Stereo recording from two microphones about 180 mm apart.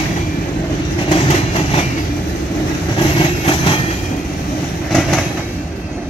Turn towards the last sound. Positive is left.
turn(degrees=0)  # may be behind; listen again after turning